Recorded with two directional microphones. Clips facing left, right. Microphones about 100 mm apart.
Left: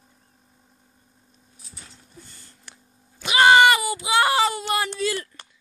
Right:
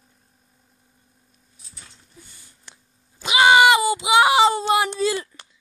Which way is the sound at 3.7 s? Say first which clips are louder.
Right 3 dB; 20° right (ahead or behind).